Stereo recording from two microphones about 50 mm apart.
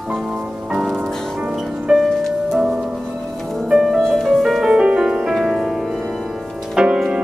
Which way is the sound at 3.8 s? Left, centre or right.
Centre.